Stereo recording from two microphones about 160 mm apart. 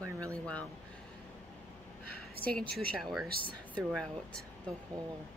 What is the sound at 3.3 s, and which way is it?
Speech, 70° right (ahead or behind).